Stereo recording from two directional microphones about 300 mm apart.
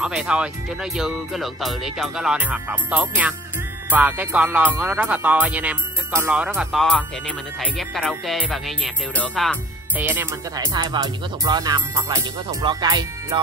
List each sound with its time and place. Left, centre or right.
0.0 s speech: centre